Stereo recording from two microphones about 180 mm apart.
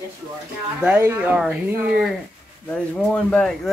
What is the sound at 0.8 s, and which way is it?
Speech, 5° right (ahead or behind).